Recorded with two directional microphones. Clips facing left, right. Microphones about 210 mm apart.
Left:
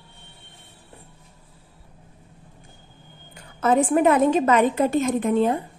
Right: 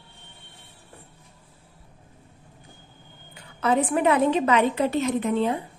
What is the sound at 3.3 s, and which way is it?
A woman's voice, 45° left (ahead or behind).